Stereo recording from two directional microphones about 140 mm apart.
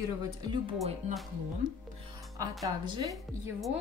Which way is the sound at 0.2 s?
30° right (ahead or behind).